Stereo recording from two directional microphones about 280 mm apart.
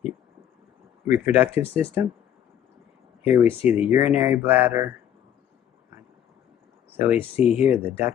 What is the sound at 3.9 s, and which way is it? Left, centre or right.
Speech, centre.